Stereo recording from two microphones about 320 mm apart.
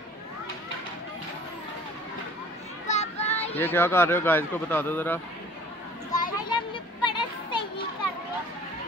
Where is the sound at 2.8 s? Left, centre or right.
Left.